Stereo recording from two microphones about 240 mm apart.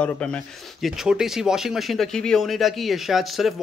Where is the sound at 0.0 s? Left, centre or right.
Centre.